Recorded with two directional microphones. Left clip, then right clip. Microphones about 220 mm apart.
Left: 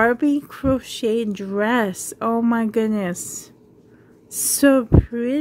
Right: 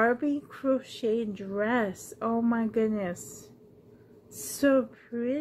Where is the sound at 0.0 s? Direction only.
45° left (ahead or behind).